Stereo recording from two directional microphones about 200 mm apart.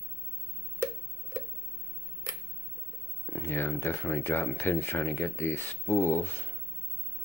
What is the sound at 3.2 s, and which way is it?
Speech, 10° left (ahead or behind).